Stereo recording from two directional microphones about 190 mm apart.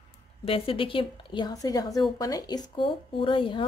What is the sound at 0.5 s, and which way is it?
Speech, 30° left (ahead or behind).